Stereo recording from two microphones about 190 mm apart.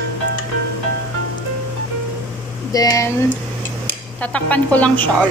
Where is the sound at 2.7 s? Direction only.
20° left (ahead or behind).